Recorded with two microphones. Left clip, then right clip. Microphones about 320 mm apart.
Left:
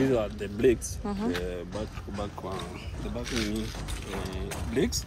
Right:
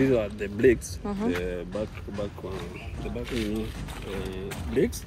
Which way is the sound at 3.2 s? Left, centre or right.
Centre.